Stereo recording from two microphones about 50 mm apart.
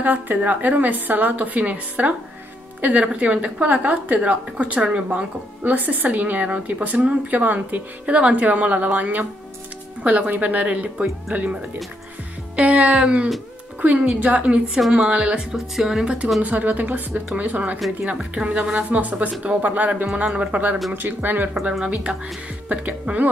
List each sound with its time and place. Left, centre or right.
0.0 s a woman's voice: right; by 5.2 s centre
5.6 s a woman's voice: right
12.5 s music: right
13.7 s a woman's voice: right
15.5 s speech: centre
16.4 s a woman's voice: right
18.1 s a woman's voice: right
20.9 s a woman's voice: right
22.1 s speech: centre
22.7 s a woman's voice: right